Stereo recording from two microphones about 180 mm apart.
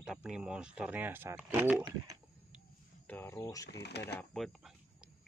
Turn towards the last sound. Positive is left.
turn(degrees=0)  # may be behind; listen again after turning